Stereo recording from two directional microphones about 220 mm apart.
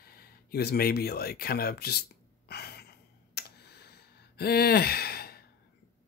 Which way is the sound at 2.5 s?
45° left (ahead or behind).